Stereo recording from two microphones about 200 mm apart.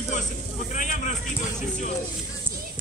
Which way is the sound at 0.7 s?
40° left (ahead or behind).